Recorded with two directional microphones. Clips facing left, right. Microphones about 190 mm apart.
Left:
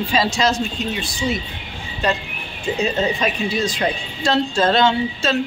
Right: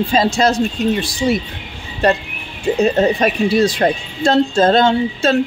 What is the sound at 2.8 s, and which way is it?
A woman's voice, 50° right (ahead or behind).